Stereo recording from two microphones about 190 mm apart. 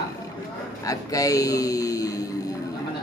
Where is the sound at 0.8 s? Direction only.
20° left (ahead or behind).